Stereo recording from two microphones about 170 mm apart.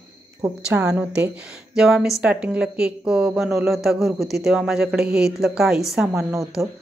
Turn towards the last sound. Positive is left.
turn(degrees=-10)  # may be behind; listen again after turning